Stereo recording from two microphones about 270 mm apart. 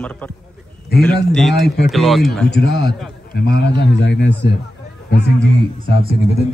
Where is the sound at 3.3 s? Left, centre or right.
Left.